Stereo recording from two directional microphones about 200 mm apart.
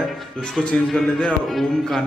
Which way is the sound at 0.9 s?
Centre (ahead or behind).